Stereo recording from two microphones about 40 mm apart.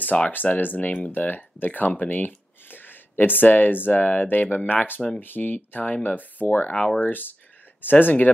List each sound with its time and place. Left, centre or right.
0.0 s speech: left
0.3 s speech: left
6.7 s speech: left
7.0 s speech: left